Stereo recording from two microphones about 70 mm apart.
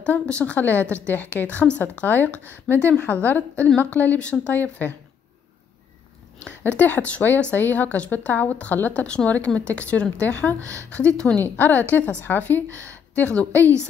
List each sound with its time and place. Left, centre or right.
0.0 s a woman's voice: centre
6.6 s a woman's voice: left
10.6 s speech: right
10.9 s a woman's voice: centre